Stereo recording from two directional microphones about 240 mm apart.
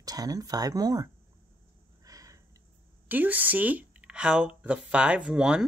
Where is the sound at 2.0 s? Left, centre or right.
Centre.